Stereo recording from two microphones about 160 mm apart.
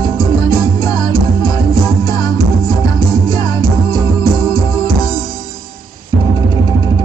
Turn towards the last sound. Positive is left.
turn(degrees=25)  # may be behind; listen again after turning